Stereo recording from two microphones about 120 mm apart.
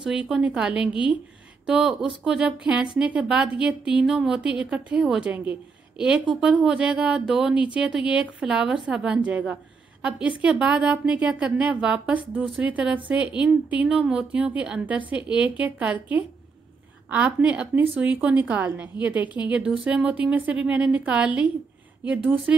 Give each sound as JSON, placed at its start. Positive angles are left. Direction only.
{"t": 0.0, "sound": "a woman's voice", "side_deg": -5}